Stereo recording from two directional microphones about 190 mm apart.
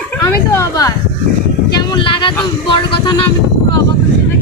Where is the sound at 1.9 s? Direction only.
25° left (ahead or behind).